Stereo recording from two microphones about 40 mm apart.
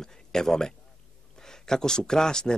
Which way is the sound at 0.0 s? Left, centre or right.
Centre.